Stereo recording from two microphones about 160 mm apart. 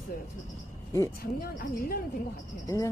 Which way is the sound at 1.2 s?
65° left (ahead or behind).